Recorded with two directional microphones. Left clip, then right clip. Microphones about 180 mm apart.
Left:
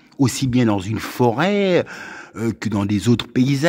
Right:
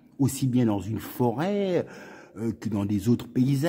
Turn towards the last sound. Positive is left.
turn(degrees=15)  # may be behind; listen again after turning